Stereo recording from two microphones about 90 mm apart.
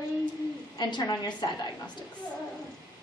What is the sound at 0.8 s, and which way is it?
Speech, 50° left (ahead or behind).